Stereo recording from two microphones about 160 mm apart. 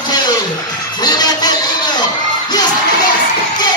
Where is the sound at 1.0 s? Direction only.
25° left (ahead or behind).